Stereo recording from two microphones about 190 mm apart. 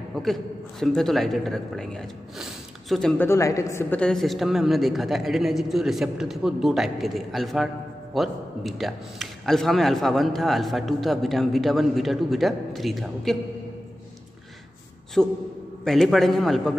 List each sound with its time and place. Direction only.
0.1 s speech: centre (ahead or behind)
3.3 s speech: 15° left (ahead or behind); by 13.4 s centre (ahead or behind)
15.2 s speech: 5° left (ahead or behind)